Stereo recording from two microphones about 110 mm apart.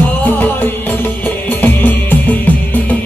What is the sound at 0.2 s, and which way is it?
Music, 15° left (ahead or behind).